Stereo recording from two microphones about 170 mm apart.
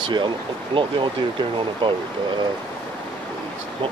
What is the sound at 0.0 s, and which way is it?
Speech, 25° right (ahead or behind).